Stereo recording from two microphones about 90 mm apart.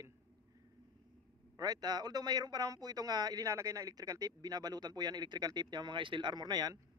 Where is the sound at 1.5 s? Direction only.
45° right (ahead or behind).